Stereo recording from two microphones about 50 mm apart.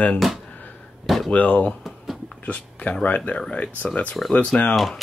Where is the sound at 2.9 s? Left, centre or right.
Left.